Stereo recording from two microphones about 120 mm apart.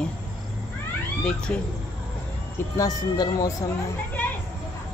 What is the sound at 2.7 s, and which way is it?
Speech, 30° left (ahead or behind).